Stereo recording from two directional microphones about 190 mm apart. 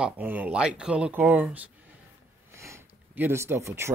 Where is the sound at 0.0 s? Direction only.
10° right (ahead or behind).